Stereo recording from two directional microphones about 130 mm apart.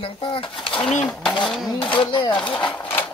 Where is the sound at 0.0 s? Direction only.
45° left (ahead or behind).